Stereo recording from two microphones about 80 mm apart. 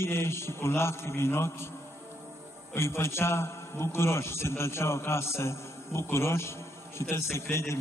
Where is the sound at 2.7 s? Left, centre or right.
Left.